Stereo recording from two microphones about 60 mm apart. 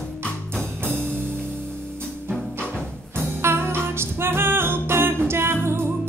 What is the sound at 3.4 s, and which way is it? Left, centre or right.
Music, right.